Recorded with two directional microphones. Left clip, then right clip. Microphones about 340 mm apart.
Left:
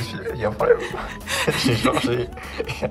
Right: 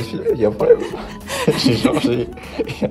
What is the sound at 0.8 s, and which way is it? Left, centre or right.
Music, centre.